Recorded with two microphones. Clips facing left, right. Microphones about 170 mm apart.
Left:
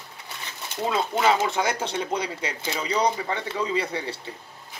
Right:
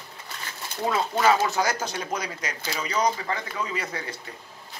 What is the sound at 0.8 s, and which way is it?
Speech, 20° left (ahead or behind).